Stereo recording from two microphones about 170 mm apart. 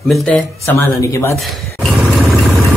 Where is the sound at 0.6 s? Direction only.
15° left (ahead or behind).